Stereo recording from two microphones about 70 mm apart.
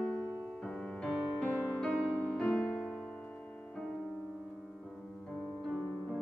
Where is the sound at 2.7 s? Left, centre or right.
Centre.